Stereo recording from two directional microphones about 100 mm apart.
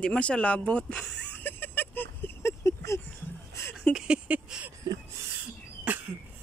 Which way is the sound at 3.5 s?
25° left (ahead or behind).